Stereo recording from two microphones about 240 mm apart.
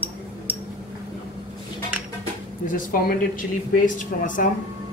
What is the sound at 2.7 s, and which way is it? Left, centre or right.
Speech, left.